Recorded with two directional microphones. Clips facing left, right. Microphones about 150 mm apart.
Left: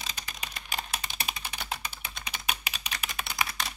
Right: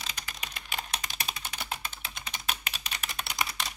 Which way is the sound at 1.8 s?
15° left (ahead or behind).